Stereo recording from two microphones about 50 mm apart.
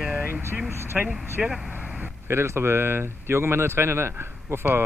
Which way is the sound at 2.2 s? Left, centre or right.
Right.